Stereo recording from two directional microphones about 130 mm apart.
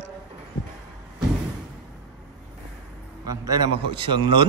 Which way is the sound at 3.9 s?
40° right (ahead or behind).